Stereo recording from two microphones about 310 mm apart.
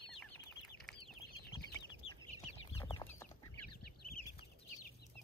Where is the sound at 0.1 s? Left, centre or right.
Centre.